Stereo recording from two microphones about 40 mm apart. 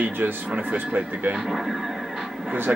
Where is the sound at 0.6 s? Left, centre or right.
Right.